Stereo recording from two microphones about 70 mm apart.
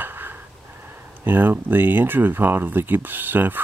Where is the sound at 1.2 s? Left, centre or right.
Right.